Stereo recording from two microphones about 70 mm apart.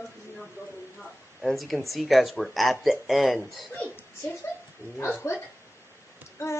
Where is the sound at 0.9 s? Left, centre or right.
Centre.